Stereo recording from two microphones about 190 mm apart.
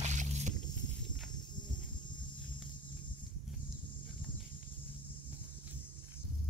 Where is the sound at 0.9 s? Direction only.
5° left (ahead or behind).